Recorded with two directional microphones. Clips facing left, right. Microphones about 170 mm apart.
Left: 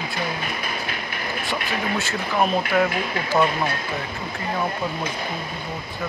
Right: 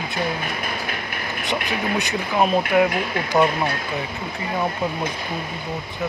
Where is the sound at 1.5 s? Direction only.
15° right (ahead or behind).